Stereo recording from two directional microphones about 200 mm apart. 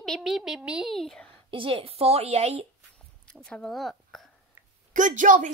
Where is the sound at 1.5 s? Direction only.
25° right (ahead or behind).